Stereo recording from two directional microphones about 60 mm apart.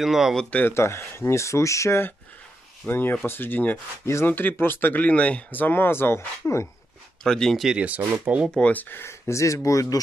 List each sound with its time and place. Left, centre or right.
0.0 s speech: centre
0.7 s speech: left
2.9 s speech: left
3.7 s speech: left
4.3 s speech: left
5.5 s speech: left
7.2 s speech: centre
7.7 s speech: right
8.5 s speech: left
9.0 s speech: left